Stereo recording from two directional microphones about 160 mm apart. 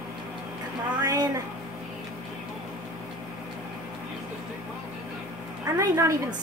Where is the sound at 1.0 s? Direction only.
20° right (ahead or behind).